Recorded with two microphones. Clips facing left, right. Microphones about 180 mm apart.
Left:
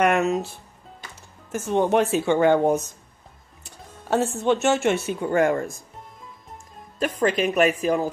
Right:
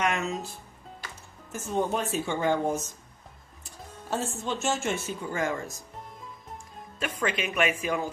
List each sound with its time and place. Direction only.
0.0 s music: 60° left (ahead or behind)
1.5 s speech: 75° left (ahead or behind); by 5.9 s 55° left (ahead or behind)
7.0 s speech: 40° left (ahead or behind)